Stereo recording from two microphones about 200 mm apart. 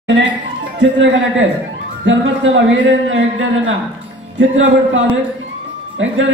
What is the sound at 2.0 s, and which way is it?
Speech, 70° right (ahead or behind).